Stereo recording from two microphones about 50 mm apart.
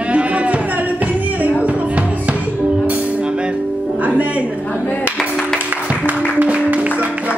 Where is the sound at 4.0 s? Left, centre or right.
Right.